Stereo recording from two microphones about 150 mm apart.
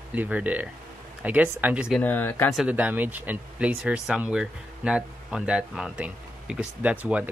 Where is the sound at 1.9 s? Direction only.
10° left (ahead or behind).